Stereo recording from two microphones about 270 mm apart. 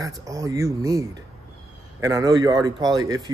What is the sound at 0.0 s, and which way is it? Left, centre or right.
Speech, centre.